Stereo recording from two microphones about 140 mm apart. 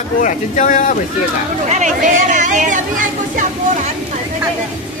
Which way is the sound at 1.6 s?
60° right (ahead or behind).